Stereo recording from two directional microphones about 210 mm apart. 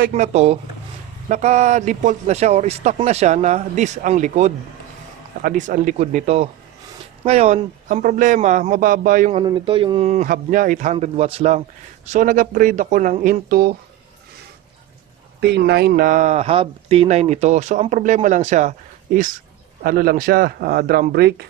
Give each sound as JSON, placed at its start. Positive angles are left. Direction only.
{"t": 0.1, "sound": "speech", "side_deg": -30}
{"t": 9.4, "sound": "speech", "side_deg": -25}
{"t": 15.4, "sound": "speech", "side_deg": -50}